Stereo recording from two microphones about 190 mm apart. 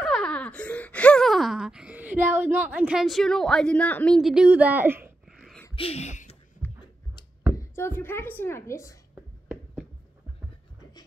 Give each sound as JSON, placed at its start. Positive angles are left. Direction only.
{"t": 0.0, "sound": "wail", "side_deg": 5}
{"t": 5.2, "sound": "a sound", "side_deg": 0}
{"t": 5.8, "sound": "speech", "side_deg": 35}
{"t": 7.5, "sound": "speech", "side_deg": 15}